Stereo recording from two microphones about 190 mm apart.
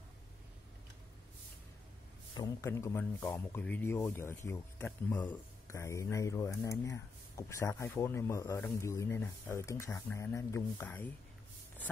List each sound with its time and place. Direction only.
2.3 s speech: 15° left (ahead or behind)